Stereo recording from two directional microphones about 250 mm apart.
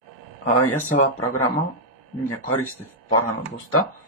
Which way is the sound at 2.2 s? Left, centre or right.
Centre.